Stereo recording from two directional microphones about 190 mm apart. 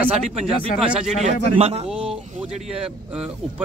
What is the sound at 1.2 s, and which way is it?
Speech, 35° right (ahead or behind).